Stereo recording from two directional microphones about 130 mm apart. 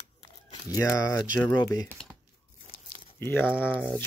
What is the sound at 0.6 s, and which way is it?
Speech, 25° left (ahead or behind).